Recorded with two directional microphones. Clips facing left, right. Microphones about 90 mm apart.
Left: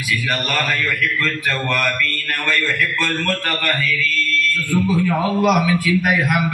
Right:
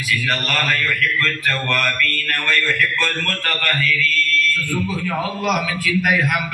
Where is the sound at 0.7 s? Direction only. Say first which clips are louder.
Even; 15° left (ahead or behind).